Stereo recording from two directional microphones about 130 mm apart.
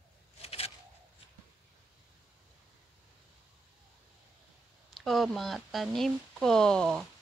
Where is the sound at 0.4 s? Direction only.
50° left (ahead or behind).